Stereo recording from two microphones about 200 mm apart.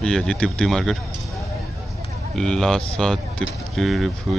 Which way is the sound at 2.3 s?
5° left (ahead or behind).